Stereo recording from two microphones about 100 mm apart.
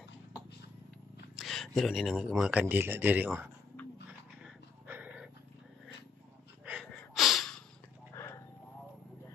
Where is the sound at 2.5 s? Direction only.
15° right (ahead or behind).